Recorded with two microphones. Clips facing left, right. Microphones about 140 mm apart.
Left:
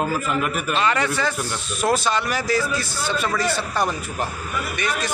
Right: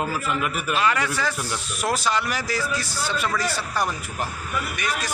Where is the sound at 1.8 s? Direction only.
20° left (ahead or behind).